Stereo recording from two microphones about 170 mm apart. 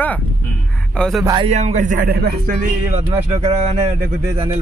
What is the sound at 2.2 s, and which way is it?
Speech, 65° right (ahead or behind).